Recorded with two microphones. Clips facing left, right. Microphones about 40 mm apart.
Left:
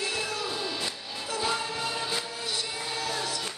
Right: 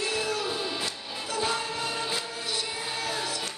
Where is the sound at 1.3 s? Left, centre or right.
Centre.